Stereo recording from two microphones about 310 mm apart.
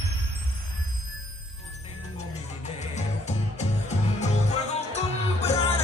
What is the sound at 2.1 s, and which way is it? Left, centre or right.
Music, left.